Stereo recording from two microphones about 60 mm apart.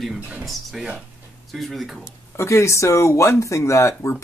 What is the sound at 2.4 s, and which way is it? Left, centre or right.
Speech, left.